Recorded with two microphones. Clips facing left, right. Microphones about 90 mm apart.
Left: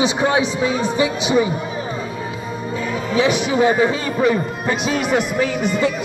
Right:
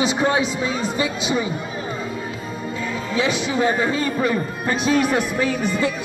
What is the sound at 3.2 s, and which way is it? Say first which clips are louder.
A man's voice: left 4 dB; 15° left (ahead or behind).